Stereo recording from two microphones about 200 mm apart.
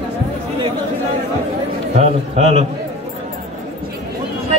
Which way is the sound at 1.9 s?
30° right (ahead or behind).